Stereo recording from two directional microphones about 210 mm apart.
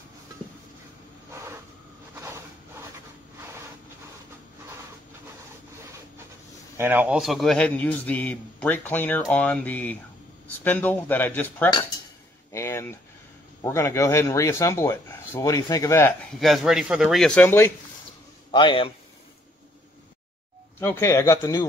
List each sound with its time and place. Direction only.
2.1 s a sound: 15° right (ahead or behind)
6.8 s a man's voice: 10° right (ahead or behind); by 11.7 s 10° left (ahead or behind)
12.5 s a sound: 10° left (ahead or behind)
13.6 s a man's voice: 15° left (ahead or behind)
16.3 s speech: centre (ahead or behind)
18.5 s a man's voice: 25° left (ahead or behind)
20.8 s a man's voice: 10° left (ahead or behind)